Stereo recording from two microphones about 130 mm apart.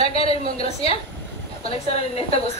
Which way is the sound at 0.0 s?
50° left (ahead or behind).